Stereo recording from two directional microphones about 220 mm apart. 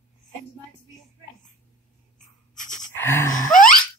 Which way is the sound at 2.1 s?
35° left (ahead or behind).